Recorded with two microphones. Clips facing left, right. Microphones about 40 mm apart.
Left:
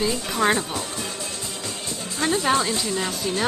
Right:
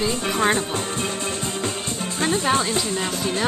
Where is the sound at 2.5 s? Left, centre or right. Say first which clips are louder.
Right 1 dB; right.